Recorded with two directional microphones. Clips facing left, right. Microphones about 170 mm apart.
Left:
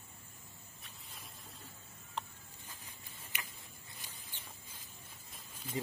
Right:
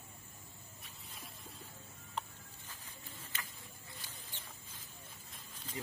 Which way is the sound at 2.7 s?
10° left (ahead or behind).